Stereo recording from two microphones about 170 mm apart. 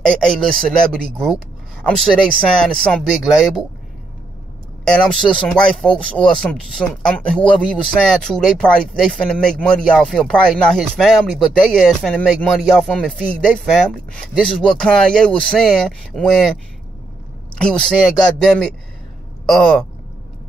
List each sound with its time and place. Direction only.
0.2 s speech: 5° left (ahead or behind)
4.8 s speech: 5° left (ahead or behind)
17.6 s speech: 5° left (ahead or behind)